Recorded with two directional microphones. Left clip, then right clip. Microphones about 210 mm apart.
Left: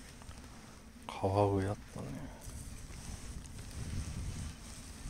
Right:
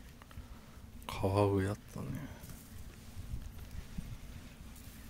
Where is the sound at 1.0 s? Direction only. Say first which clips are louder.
Left 1 dB; 30° right (ahead or behind).